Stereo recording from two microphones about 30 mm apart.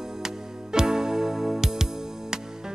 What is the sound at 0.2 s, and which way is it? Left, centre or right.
Music, right.